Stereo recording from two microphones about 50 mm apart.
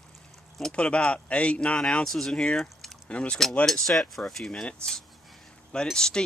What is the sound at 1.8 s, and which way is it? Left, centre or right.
Speech, centre.